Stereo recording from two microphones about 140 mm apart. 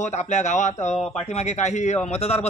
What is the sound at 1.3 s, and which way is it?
A man's voice, 55° left (ahead or behind).